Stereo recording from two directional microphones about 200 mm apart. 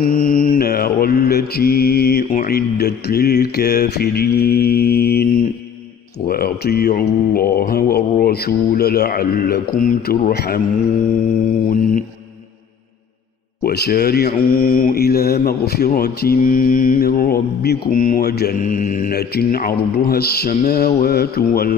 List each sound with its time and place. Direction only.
0.0 s mantra: 45° left (ahead or behind)
10.3 s mantra: 50° left (ahead or behind)
13.7 s mantra: 50° left (ahead or behind)